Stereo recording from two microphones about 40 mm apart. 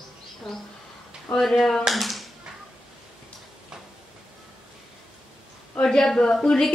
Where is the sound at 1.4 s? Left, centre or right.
Centre.